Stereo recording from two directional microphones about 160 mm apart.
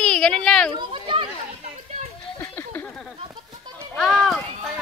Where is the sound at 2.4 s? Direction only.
15° left (ahead or behind).